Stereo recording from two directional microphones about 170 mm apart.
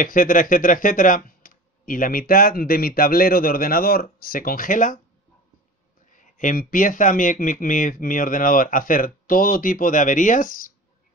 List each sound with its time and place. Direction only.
0.0 s speech: 55° left (ahead or behind)
6.1 s speech: 50° left (ahead or behind)